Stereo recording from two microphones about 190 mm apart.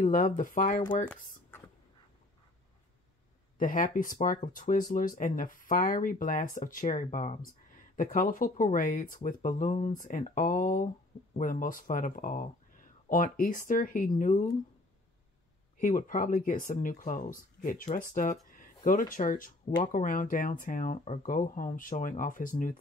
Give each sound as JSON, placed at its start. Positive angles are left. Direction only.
{"t": 0.0, "sound": "speech", "side_deg": 45}
{"t": 3.5, "sound": "speech", "side_deg": 45}
{"t": 15.8, "sound": "speech", "side_deg": 45}